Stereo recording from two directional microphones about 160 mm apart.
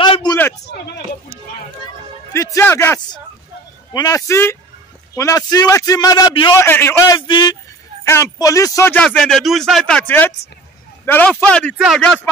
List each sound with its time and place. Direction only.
0.0 s a sound: 30° left (ahead or behind)
0.7 s a sound: 90° left
2.3 s a man's voice: 20° left (ahead or behind)
6.6 s speech: 15° left (ahead or behind)
7.2 s a man's voice: 30° left (ahead or behind)
8.0 s a man's voice: 15° left (ahead or behind)
8.9 s speech: 5° left (ahead or behind)